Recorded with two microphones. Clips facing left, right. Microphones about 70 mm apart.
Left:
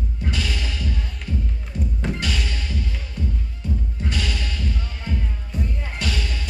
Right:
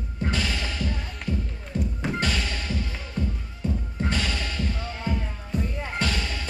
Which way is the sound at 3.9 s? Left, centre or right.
Right.